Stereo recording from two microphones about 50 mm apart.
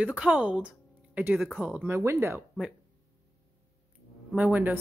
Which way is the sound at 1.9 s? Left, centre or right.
Right.